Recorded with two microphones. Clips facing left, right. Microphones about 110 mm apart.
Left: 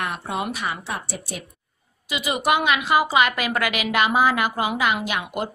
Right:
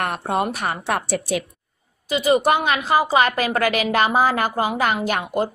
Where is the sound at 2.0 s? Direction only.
40° right (ahead or behind).